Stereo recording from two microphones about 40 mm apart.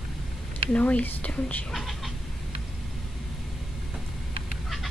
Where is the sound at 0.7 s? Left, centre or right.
Left.